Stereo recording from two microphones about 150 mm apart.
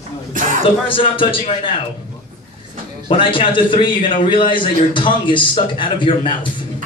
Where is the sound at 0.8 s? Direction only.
35° left (ahead or behind).